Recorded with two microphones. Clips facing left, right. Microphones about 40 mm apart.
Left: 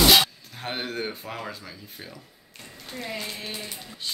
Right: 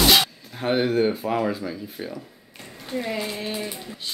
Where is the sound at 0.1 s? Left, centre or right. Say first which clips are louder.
Even; centre.